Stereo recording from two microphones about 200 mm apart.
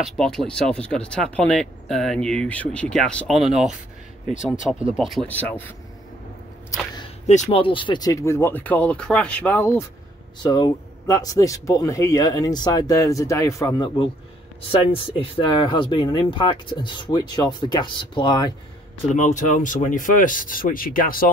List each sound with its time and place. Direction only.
0.0 s speech: centre (ahead or behind)
4.9 s a man's voice: centre (ahead or behind)
7.2 s a man's voice: 30° left (ahead or behind); by 13.8 s 15° left (ahead or behind)
14.7 s speech: 25° left (ahead or behind)
19.1 s speech: 40° left (ahead or behind)